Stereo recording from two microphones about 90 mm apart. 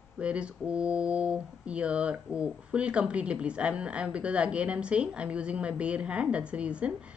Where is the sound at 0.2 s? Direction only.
10° right (ahead or behind).